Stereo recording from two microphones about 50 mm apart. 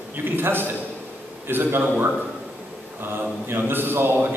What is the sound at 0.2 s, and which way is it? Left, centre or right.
A man's voice, right.